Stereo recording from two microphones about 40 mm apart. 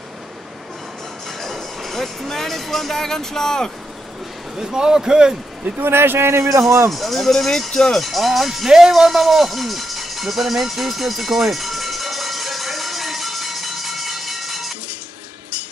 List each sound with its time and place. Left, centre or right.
1.4 s speech: centre
4.6 s speech: centre
5.8 s a man's voice: right
6.9 s speech: centre
8.0 s speech: centre
8.6 s music: centre